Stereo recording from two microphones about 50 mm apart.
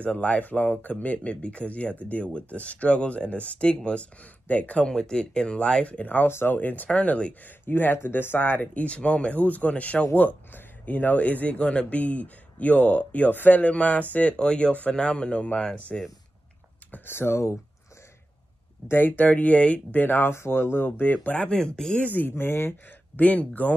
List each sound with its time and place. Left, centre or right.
0.0 s speech: left
4.8 s speech: centre
6.2 s speech: left
6.9 s speech: left
7.4 s speech: left
8.8 s speech: left
16.9 s speech: left
18.9 s speech: left
20.2 s speech: left
21.0 s speech: left
21.5 s speech: centre
22.0 s speech: left
22.4 s speech: left
23.1 s speech: left